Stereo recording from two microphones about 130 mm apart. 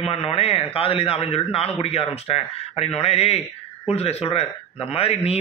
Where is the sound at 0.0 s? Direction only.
55° left (ahead or behind).